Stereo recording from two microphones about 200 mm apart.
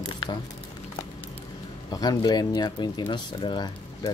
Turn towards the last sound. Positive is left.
turn(degrees=20)  # may be behind; listen again after turning